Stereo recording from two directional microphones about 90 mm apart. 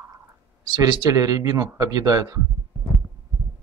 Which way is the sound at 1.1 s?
40° right (ahead or behind).